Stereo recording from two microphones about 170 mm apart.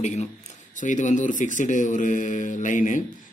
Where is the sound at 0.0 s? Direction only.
40° left (ahead or behind).